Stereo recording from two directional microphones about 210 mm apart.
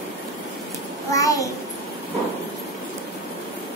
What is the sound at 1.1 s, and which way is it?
Speech, 15° left (ahead or behind).